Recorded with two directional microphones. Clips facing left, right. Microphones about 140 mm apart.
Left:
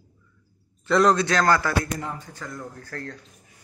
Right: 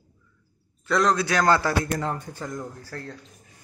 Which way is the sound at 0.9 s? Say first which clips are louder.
Left 3 dB; centre (ahead or behind).